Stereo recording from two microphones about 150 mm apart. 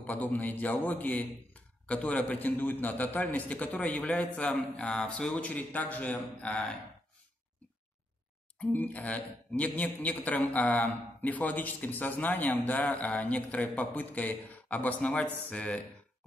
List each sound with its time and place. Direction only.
0.0 s a man's voice: 10° left (ahead or behind)
8.5 s a man's voice: 10° left (ahead or behind)